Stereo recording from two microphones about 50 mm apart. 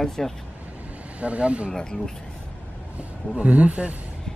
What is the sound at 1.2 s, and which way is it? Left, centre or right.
Speech, right.